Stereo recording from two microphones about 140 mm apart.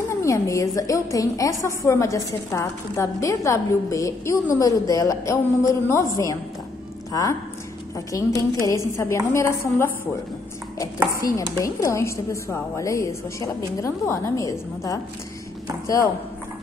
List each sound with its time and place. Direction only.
0.1 s a woman's voice: 20° left (ahead or behind)
11.3 s a woman's voice: 20° left (ahead or behind)